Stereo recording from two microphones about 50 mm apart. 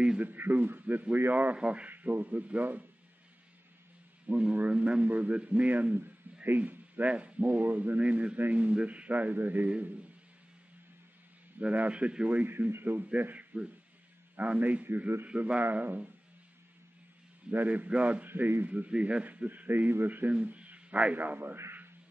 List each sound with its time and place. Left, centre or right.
0.2 s a man's voice: right
1.6 s a man's voice: right
1.9 s a man's voice: right
4.3 s a man's voice: right
11.6 s a man's voice: right
12.3 s a man's voice: right
17.5 s a man's voice: right
17.8 s a man's voice: right
18.2 s a man's voice: right
18.9 s a man's voice: right